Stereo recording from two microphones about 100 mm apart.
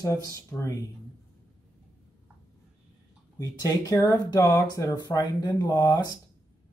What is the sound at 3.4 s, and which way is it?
Speech, 40° left (ahead or behind).